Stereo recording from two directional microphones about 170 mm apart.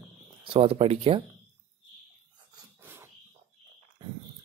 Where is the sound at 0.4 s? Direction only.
35° right (ahead or behind).